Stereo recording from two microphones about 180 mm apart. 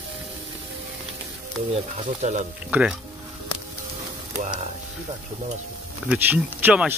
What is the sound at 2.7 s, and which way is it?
Speech, 10° right (ahead or behind).